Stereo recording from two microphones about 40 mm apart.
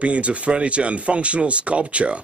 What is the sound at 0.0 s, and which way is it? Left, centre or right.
Speech, right.